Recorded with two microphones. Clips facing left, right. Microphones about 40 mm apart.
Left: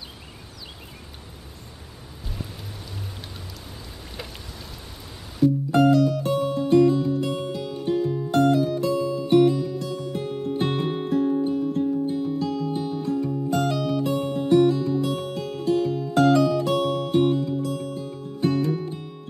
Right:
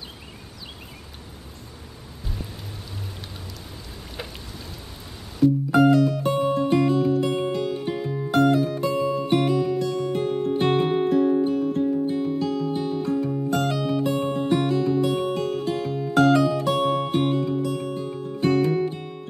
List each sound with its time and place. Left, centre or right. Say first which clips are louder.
5.4 s music: right 1 dB; centre
6.5 s music: left 5 dB; centre
8.3 s music: right 1 dB; centre
8.9 s music: left 2 dB; right
9.5 s music: right 3 dB; centre
11.4 s music: right 1 dB; centre
16.1 s music: right 1 dB; centre